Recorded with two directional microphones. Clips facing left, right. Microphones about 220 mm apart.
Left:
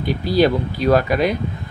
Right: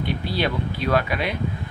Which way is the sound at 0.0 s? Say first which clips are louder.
Left 8 dB; 40° left (ahead or behind).